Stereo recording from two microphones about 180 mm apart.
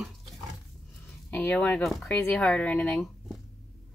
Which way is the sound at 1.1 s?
10° left (ahead or behind).